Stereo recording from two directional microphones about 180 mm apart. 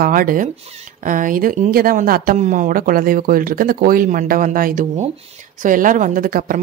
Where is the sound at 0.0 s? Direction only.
50° right (ahead or behind).